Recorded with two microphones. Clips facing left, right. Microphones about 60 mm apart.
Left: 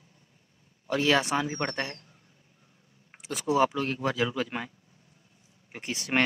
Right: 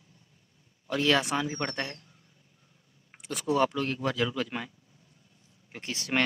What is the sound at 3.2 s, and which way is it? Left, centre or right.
Speech, centre.